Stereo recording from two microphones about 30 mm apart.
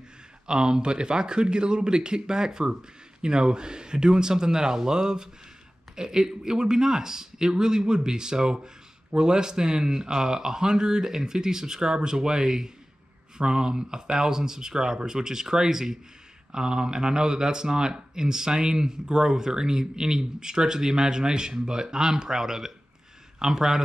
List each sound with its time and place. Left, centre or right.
0.5 s speech: right
13.4 s speech: right
16.5 s speech: right